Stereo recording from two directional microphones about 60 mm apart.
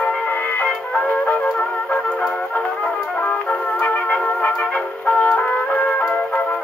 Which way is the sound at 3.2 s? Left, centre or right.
Left.